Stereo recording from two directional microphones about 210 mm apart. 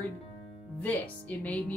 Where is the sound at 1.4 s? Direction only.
5° left (ahead or behind).